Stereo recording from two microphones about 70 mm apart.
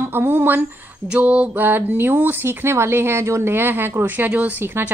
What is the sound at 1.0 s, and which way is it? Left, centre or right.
A woman's voice, centre.